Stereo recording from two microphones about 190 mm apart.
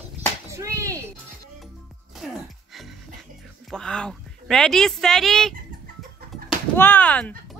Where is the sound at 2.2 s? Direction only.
Centre (ahead or behind).